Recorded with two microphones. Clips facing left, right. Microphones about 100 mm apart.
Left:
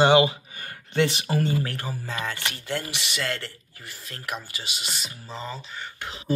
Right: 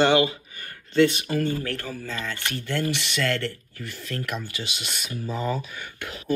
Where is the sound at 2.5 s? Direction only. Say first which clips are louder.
Right 2 dB; 55° right (ahead or behind).